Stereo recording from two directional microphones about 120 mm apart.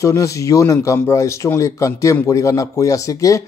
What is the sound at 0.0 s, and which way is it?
Speech, 25° left (ahead or behind).